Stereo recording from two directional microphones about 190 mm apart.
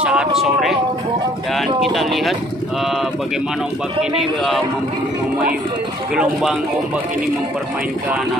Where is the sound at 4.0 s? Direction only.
Centre (ahead or behind).